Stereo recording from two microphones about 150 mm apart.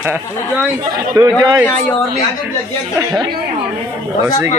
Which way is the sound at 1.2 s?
25° right (ahead or behind).